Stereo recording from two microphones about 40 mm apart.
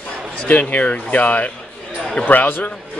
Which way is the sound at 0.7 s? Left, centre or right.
Left.